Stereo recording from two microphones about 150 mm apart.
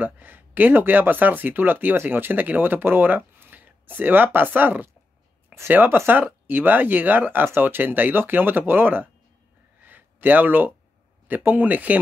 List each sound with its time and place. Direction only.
0.0 s speech: 10° right (ahead or behind)
9.8 s a sound: 10° right (ahead or behind)
11.2 s speech: 10° right (ahead or behind)